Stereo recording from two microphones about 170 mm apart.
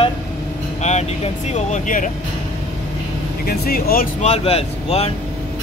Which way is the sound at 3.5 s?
65° left (ahead or behind).